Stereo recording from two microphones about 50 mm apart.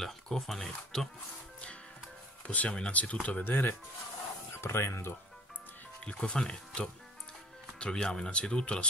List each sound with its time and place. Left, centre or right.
0.0 s speech: centre
2.4 s speech: left
3.4 s speech: left
4.6 s speech: left
6.0 s speech: centre